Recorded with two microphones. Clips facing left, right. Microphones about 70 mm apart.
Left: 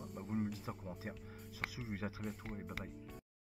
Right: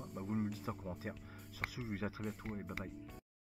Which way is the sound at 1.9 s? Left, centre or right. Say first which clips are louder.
Right 2 dB; right.